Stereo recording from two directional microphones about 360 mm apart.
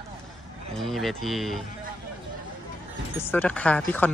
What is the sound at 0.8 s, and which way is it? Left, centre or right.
Speech, centre.